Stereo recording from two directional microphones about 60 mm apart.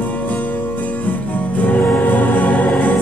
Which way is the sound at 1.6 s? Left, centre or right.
Left.